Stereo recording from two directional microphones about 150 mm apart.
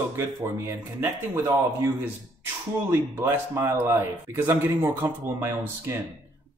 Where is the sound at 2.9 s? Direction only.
15° right (ahead or behind).